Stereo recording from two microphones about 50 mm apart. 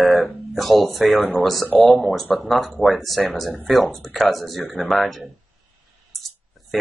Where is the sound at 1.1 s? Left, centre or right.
Left.